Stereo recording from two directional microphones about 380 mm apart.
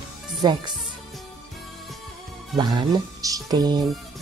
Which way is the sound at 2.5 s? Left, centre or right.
Centre.